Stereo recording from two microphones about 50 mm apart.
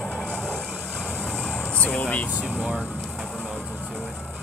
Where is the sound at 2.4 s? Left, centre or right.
Right.